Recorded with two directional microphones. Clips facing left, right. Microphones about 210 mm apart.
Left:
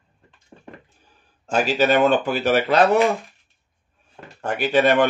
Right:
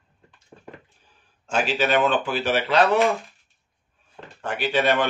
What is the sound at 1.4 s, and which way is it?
Speech, 40° left (ahead or behind).